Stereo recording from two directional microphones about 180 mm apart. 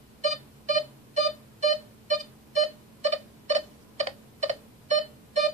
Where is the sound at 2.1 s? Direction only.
40° right (ahead or behind).